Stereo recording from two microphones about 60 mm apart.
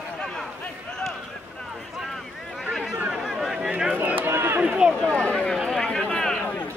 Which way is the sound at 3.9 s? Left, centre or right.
Right.